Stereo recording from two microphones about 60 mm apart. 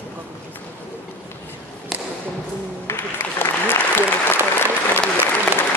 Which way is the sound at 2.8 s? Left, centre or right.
Left.